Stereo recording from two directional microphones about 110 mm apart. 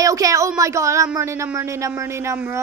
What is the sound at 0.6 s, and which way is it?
Speech, 30° right (ahead or behind).